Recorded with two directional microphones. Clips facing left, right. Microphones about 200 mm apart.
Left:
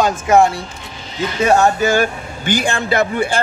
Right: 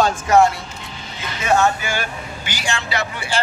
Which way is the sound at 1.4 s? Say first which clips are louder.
Left 5 dB; 35° left (ahead or behind).